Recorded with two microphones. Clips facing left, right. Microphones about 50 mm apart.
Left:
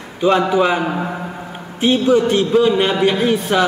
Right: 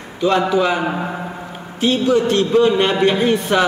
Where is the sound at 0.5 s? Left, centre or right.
Centre.